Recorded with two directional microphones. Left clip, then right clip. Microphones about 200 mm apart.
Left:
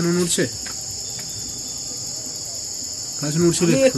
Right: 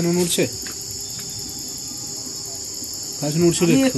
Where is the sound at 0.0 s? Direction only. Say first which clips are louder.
Right 1 dB; 10° left (ahead or behind).